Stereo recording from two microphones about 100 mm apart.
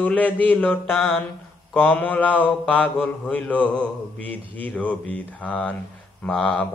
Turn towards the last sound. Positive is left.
turn(degrees=5)  # may be behind; listen again after turning